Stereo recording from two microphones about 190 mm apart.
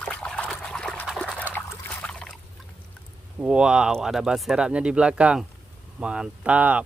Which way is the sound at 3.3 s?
5° right (ahead or behind).